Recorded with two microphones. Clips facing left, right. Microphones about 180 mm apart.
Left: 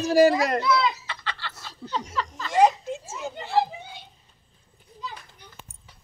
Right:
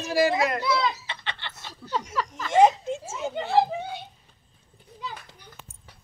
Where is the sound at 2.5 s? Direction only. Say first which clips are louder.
Right 1 dB; 25° right (ahead or behind).